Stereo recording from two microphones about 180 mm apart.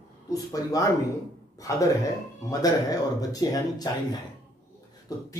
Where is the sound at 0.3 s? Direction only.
20° left (ahead or behind).